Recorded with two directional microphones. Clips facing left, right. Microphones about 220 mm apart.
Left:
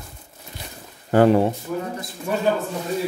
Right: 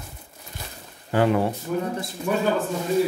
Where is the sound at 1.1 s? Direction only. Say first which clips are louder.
Left 5 dB; 45° left (ahead or behind).